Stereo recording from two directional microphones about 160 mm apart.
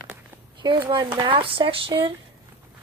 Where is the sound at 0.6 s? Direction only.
30° right (ahead or behind).